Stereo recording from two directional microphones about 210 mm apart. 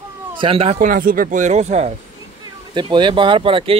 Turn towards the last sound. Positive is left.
turn(degrees=-25)  # may be behind; listen again after turning